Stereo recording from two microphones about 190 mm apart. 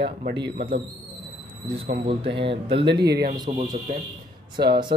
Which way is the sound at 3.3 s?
25° right (ahead or behind).